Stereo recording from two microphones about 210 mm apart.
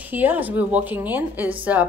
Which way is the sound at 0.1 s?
10° right (ahead or behind).